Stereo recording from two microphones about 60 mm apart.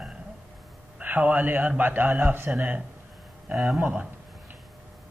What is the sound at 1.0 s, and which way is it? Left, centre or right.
A man's voice, right.